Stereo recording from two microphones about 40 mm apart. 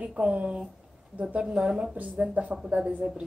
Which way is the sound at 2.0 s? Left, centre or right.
Right.